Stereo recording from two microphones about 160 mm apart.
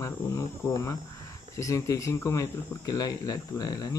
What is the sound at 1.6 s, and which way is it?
Speech, 20° left (ahead or behind).